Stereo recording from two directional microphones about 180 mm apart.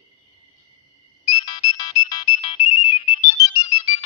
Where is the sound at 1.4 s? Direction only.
20° left (ahead or behind).